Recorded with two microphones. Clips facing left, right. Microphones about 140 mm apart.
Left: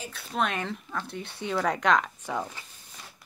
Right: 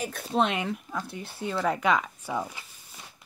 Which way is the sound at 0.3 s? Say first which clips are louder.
Right 3 dB; 25° right (ahead or behind).